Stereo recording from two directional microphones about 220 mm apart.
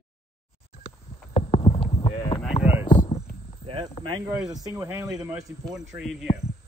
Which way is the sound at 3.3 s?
25° right (ahead or behind).